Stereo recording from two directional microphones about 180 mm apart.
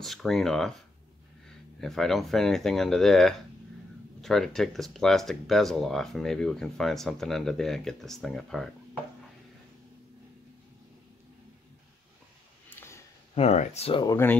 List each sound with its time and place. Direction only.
0.0 s speech: centre (ahead or behind)
1.8 s speech: centre (ahead or behind)
12.6 s a sound: 15° left (ahead or behind)
13.3 s speech: 35° left (ahead or behind)
14.0 s speech: 15° left (ahead or behind)